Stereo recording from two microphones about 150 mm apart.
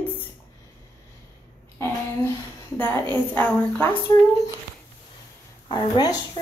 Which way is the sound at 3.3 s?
10° left (ahead or behind).